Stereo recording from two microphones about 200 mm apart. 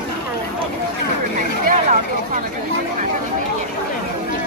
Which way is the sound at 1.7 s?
40° right (ahead or behind).